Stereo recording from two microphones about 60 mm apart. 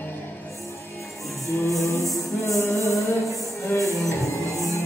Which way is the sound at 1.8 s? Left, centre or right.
Left.